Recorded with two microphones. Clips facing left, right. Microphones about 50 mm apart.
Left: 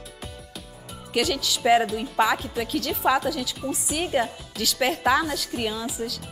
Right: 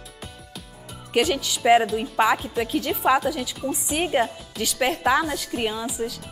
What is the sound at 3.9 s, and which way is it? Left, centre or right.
Speech, right.